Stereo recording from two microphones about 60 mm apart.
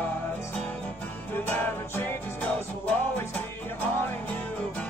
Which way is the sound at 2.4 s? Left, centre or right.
Left.